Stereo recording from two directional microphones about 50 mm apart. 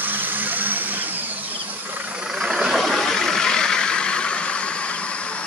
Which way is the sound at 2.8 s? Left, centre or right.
Centre.